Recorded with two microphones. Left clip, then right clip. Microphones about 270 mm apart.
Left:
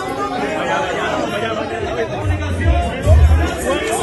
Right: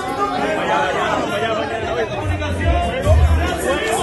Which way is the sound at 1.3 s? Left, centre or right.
Right.